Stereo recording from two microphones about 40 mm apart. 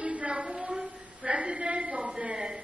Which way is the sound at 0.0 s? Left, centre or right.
Right.